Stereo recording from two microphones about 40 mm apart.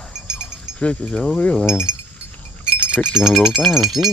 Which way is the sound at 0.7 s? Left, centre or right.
Left.